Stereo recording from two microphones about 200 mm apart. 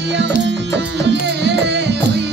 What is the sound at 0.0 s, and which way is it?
Music, 60° right (ahead or behind).